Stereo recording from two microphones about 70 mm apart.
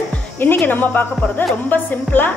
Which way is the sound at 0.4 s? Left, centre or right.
Left.